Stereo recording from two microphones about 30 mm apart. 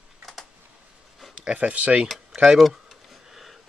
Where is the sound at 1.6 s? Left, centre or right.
Right.